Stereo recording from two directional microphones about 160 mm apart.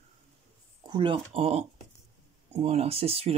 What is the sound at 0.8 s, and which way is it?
A man's voice, 30° right (ahead or behind).